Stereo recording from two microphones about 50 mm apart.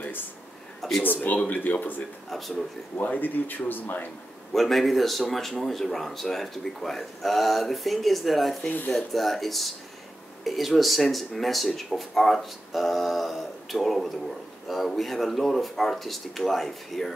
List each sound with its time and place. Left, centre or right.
0.7 s a sound: centre
1.0 s speech: left
2.3 s speech: centre
3.0 s speech: left
4.6 s speech: centre
8.6 s speech: left
8.9 s speech: centre